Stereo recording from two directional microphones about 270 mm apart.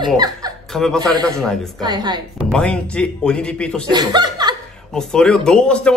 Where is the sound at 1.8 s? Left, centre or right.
Centre.